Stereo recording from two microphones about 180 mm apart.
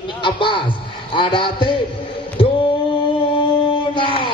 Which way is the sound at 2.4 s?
30° left (ahead or behind).